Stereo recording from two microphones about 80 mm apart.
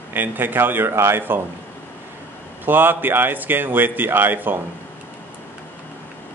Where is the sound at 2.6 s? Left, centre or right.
Right.